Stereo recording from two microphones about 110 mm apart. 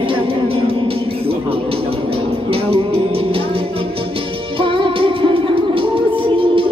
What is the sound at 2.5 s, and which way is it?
Music, 60° right (ahead or behind).